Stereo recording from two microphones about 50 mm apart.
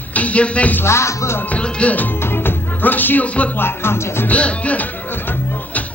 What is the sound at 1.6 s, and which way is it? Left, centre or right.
Speech, left.